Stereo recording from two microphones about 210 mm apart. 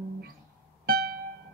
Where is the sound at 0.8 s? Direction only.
45° right (ahead or behind).